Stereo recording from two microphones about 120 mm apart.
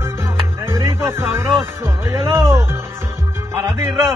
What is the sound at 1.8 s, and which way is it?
A man's voice, 20° right (ahead or behind).